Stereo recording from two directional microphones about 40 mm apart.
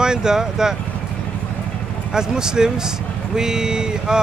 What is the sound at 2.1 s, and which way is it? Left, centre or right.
Speech, centre.